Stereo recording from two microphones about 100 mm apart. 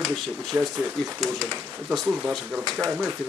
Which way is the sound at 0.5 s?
25° right (ahead or behind).